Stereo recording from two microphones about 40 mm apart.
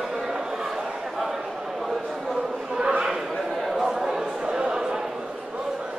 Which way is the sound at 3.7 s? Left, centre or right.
Centre.